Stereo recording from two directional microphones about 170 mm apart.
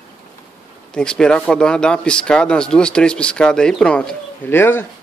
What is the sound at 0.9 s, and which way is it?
Speech, 5° left (ahead or behind).